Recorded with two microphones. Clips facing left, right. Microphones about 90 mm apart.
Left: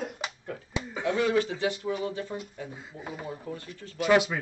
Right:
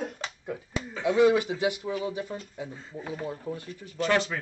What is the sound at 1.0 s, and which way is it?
Speech, 15° right (ahead or behind).